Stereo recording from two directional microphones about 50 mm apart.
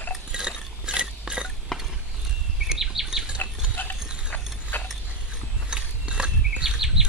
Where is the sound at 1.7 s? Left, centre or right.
Centre.